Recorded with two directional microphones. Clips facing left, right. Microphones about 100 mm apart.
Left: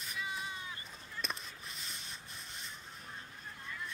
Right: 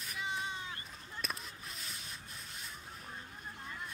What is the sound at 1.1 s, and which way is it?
Rub, 5° right (ahead or behind).